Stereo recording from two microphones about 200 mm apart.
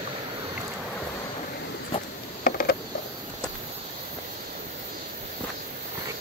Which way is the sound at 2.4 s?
45° left (ahead or behind).